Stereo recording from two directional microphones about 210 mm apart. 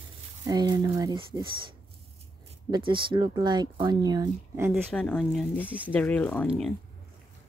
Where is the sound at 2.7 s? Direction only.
25° right (ahead or behind).